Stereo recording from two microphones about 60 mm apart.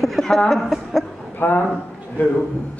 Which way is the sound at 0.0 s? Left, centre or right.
Centre.